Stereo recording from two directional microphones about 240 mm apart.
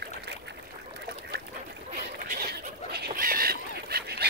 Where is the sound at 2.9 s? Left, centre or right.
Right.